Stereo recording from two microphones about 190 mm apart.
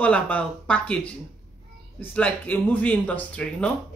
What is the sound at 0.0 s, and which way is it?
Speech, 5° left (ahead or behind).